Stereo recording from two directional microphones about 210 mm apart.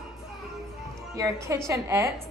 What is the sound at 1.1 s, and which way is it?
A woman's voice, 15° right (ahead or behind).